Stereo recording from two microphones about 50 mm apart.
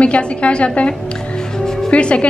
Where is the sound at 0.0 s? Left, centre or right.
Left.